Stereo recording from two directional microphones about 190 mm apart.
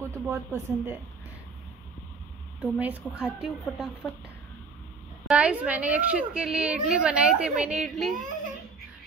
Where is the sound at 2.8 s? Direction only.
5° right (ahead or behind).